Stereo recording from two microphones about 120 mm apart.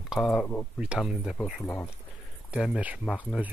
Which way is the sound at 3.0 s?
10° left (ahead or behind).